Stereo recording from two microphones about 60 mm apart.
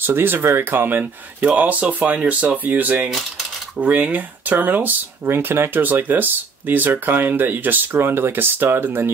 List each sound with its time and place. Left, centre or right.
0.0 s speech: right
1.5 s speech: right
3.1 s cutlery: centre
3.8 s speech: right